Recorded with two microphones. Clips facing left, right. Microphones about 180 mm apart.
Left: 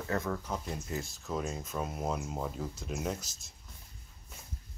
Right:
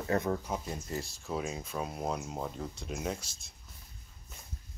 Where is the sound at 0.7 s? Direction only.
Centre (ahead or behind).